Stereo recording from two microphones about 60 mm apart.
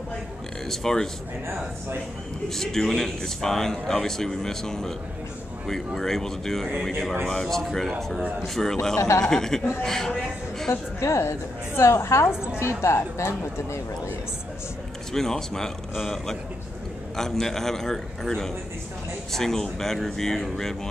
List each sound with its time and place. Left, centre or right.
0.7 s speech: centre
2.5 s speech: centre
5.9 s speech: centre
8.9 s speech: left
9.2 s speech: centre
10.7 s a woman's voice: left
15.1 s speech: centre
17.2 s speech: centre